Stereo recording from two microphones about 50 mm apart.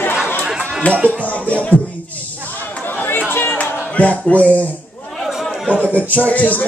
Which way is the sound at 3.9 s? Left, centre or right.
Left.